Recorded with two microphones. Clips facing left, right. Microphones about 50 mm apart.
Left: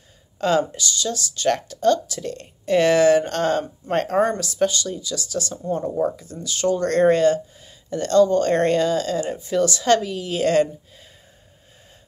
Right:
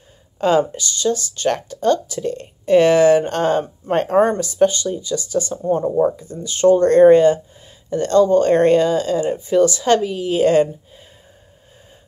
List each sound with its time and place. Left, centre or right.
0.4 s speech: centre
1.5 s speech: centre
6.4 s speech: right